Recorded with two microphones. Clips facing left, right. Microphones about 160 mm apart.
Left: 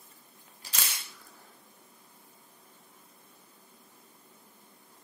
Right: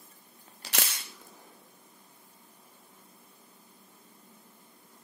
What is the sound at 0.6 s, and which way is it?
Cap gun, 80° right.